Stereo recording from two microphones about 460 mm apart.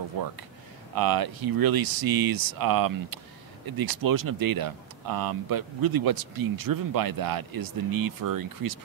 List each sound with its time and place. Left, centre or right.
0.9 s speech: right